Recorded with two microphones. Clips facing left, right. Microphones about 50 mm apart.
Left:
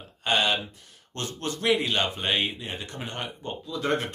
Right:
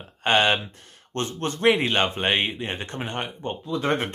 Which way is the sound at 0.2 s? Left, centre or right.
Right.